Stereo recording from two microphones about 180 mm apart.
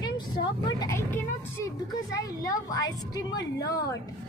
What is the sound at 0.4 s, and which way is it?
A woman's voice, 20° left (ahead or behind).